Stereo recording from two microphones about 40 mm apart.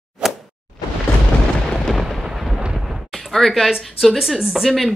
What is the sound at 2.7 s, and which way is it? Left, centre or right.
Eruption, centre.